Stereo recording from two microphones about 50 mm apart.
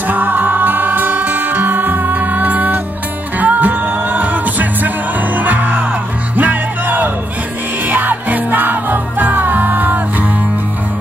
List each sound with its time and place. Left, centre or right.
0.1 s music: right